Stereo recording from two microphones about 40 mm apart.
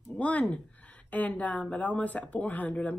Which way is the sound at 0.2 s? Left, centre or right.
Left.